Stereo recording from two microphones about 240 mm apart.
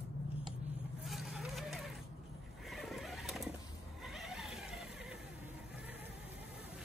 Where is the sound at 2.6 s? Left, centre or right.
Centre.